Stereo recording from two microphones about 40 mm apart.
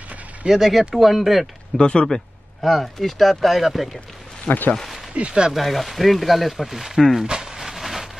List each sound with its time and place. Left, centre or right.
0.5 s speech: centre
1.8 s speech: left
2.6 s speech: centre
4.5 s speech: left
5.1 s speech: right
5.5 s speech: centre
7.2 s a sound: centre